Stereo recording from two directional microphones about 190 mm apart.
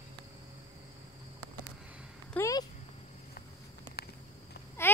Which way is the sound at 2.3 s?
15° left (ahead or behind).